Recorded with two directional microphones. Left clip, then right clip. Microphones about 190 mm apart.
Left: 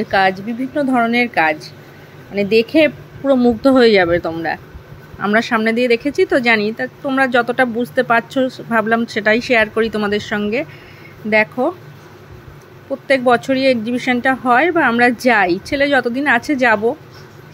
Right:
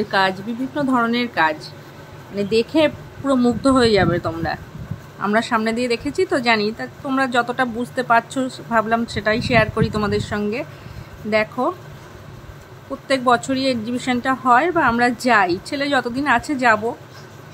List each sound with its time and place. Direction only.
0.1 s speech: 10° left (ahead or behind)
13.1 s speech: 15° left (ahead or behind)